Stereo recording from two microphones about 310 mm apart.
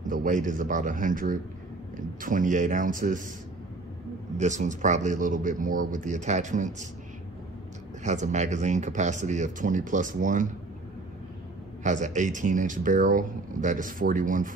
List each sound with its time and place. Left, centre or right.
0.0 s speech: right
4.4 s speech: right
8.0 s speech: right
11.8 s speech: right